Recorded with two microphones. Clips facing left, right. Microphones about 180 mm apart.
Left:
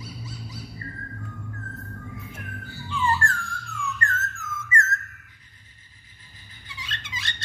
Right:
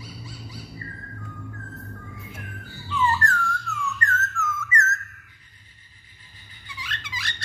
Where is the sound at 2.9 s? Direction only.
30° left (ahead or behind).